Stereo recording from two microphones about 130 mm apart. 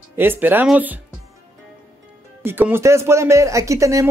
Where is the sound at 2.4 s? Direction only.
15° right (ahead or behind).